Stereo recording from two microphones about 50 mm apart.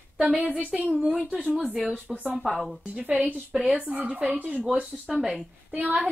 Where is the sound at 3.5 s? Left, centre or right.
Centre.